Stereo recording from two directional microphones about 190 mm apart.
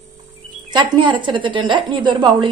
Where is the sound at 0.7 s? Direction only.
25° right (ahead or behind).